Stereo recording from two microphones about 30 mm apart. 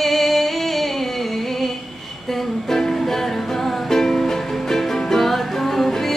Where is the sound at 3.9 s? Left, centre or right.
Centre.